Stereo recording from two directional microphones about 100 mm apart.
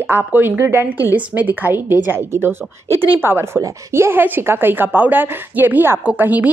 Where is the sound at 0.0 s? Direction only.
20° right (ahead or behind).